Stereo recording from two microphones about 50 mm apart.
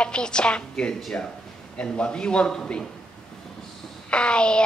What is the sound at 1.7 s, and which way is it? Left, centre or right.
Child singing, centre.